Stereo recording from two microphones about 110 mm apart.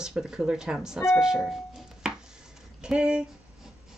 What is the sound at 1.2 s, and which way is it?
Music, 5° right (ahead or behind).